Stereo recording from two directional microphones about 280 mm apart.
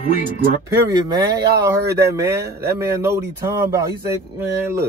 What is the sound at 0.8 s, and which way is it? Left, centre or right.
Speech, centre.